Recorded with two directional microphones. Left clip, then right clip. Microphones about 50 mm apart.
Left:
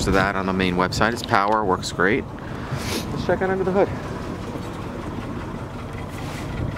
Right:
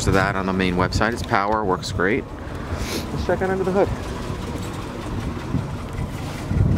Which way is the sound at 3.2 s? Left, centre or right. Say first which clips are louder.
Even; centre.